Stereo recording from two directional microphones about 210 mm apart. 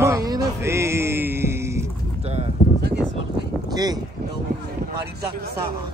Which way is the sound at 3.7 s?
20° right (ahead or behind).